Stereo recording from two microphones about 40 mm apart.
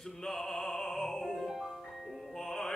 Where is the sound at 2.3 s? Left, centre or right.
Centre.